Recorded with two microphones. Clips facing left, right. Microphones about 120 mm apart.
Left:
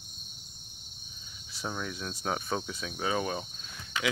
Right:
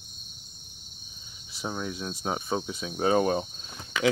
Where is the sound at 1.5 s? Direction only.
15° right (ahead or behind).